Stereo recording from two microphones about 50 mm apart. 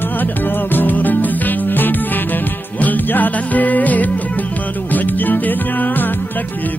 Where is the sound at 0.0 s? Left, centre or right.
Left.